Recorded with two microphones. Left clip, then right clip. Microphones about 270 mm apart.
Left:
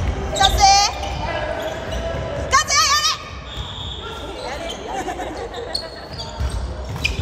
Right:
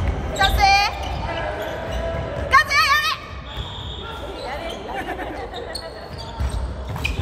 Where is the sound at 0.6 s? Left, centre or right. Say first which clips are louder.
Left 2 dB; centre.